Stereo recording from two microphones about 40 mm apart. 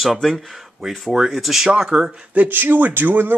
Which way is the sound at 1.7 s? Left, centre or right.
Centre.